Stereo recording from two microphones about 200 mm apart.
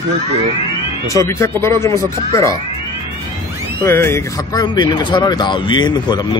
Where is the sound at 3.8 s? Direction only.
15° left (ahead or behind).